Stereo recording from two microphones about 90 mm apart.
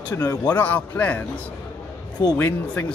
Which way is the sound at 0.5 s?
20° left (ahead or behind).